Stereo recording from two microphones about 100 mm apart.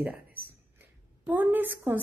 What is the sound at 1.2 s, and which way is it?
Speech, 20° right (ahead or behind).